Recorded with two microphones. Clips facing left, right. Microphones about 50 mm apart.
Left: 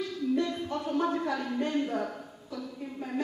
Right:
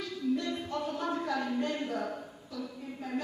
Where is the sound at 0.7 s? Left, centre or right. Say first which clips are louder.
Left 6 dB; centre.